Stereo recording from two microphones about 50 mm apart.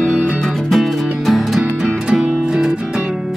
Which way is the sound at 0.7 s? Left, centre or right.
Centre.